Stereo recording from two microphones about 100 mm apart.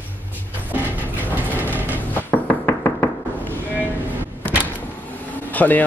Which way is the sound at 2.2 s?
20° left (ahead or behind).